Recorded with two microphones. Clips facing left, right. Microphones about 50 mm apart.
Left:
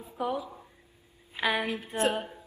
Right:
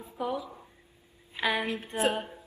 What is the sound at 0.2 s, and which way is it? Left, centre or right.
A woman's voice, centre.